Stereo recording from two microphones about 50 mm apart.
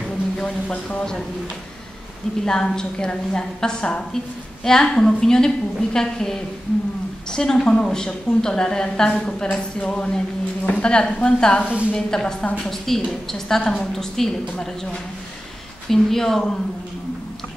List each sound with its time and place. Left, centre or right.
0.4 s a woman's voice: centre
2.4 s a woman's voice: centre
11.6 s a woman's voice: right
11.9 s a woman's voice: centre
15.9 s a woman's voice: centre